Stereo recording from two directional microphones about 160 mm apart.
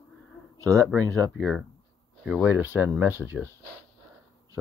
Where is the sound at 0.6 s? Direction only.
20° right (ahead or behind).